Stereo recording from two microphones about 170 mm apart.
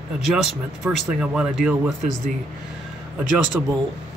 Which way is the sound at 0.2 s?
5° right (ahead or behind).